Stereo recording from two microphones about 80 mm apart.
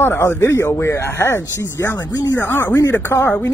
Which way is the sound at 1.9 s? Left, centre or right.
Left.